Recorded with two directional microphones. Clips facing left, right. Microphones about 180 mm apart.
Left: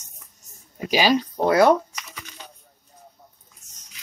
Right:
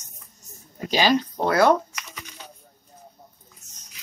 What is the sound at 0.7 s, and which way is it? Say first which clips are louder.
Speech: left 1 dB; 10° left (ahead or behind).